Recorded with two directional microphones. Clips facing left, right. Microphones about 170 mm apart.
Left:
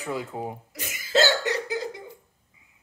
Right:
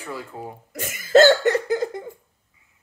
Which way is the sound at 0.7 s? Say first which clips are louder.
Right 10 dB; 50° right (ahead or behind).